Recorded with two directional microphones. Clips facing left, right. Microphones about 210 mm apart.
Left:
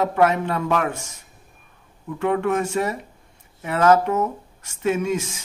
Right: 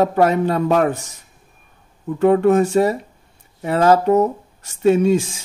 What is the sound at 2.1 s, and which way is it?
Speech, 35° right (ahead or behind).